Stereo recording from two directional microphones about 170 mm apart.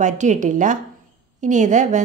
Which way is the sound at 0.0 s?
45° right (ahead or behind).